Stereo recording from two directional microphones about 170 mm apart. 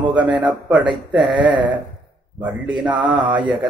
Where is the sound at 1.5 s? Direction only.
30° right (ahead or behind).